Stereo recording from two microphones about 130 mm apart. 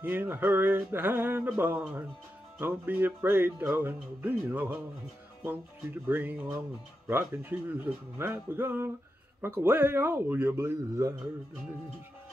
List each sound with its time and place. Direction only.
0.0 s music: 15° right (ahead or behind)
6.0 s music: 15° right (ahead or behind)